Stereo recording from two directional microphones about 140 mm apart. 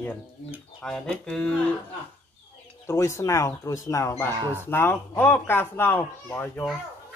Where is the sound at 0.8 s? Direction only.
5° left (ahead or behind).